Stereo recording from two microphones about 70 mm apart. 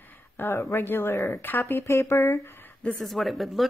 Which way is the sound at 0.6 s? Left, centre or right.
Left.